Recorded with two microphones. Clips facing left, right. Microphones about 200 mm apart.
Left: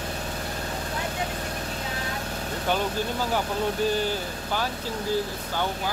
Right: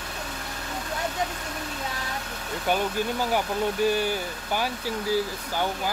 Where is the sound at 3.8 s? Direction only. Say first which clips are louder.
Right 2 dB; 10° right (ahead or behind).